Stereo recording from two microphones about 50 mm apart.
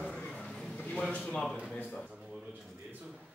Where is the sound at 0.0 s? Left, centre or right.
Centre.